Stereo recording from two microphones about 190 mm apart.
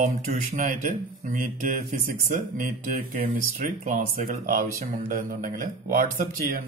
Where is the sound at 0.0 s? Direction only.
40° right (ahead or behind).